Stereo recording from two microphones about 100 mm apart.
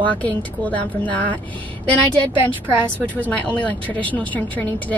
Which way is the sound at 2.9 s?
15° left (ahead or behind).